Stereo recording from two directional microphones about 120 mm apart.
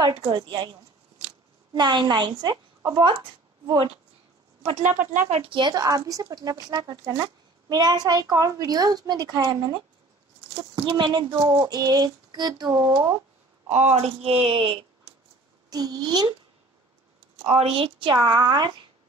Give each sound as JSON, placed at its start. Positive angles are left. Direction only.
{"t": 0.2, "sound": "speech", "side_deg": -40}
{"t": 3.7, "sound": "speech", "side_deg": -55}
{"t": 4.6, "sound": "speech", "side_deg": -80}
{"t": 5.3, "sound": "speech", "side_deg": -55}
{"t": 5.6, "sound": "speech", "side_deg": -35}
{"t": 13.7, "sound": "speech", "side_deg": -70}
{"t": 13.9, "sound": "speech", "side_deg": -55}
{"t": 15.7, "sound": "speech", "side_deg": -35}
{"t": 17.6, "sound": "speech", "side_deg": -55}